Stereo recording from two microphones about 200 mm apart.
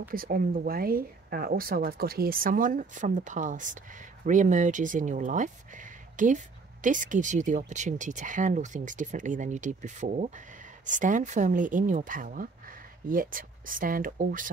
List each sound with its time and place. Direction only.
0.1 s speech: 45° right (ahead or behind)